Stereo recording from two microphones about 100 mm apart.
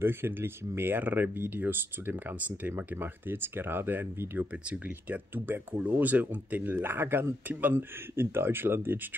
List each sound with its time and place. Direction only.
0.0 s speech: 20° right (ahead or behind)